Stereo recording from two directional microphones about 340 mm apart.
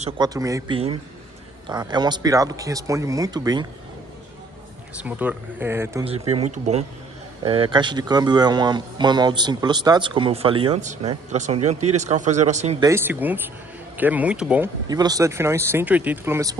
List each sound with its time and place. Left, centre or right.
0.0 s speech: centre
5.0 s speech: centre; by 12.7 s right
12.8 s speech: centre